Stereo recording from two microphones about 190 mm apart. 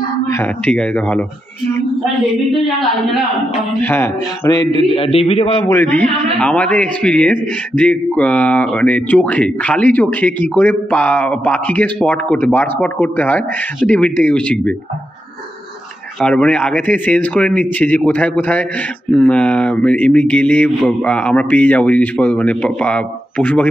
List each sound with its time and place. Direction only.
0.3 s a man's voice: 10° left (ahead or behind)
3.8 s a man's voice: 10° left (ahead or behind)
4.7 s a man's voice: 30° left (ahead or behind)
5.7 s a man's voice: 10° left (ahead or behind)
16.2 s a man's voice: 5° left (ahead or behind)